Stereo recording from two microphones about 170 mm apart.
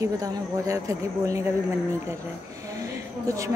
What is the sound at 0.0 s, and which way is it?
Speech, 20° right (ahead or behind).